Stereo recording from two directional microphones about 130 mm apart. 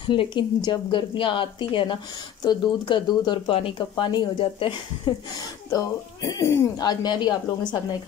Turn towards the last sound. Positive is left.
turn(degrees=35)  # may be behind; listen again after turning